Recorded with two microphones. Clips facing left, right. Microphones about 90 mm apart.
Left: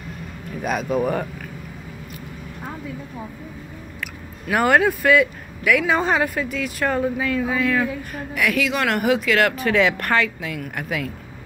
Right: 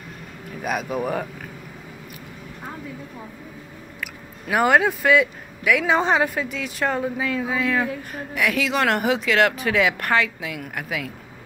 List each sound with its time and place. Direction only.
0.6 s a woman's voice: 5° right (ahead or behind)
4.0 s a woman's voice: 10° right (ahead or behind)
9.7 s a woman's voice: 10° right (ahead or behind)